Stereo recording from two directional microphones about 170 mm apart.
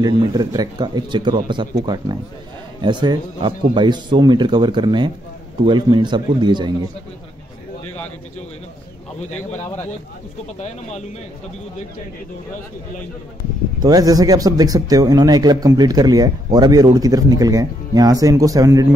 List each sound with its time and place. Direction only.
0.0 s speech: 25° right (ahead or behind)
13.7 s speech: 20° right (ahead or behind)